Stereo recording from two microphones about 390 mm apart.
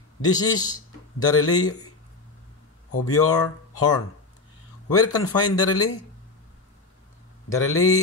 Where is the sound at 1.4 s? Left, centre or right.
Left.